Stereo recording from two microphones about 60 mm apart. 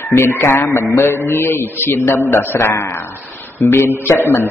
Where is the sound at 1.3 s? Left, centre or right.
Left.